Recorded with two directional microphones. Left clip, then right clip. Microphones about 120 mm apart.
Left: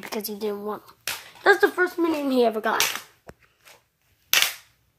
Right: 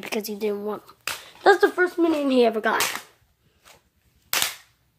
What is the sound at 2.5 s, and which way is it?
Speech, 25° right (ahead or behind).